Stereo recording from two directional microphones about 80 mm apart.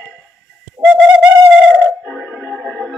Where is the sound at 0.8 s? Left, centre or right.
Centre.